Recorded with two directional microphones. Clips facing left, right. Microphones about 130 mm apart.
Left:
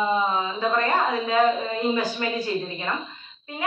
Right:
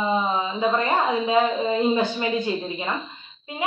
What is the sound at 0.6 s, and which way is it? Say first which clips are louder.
A woman's voice: right 1 dB; 20° right (ahead or behind).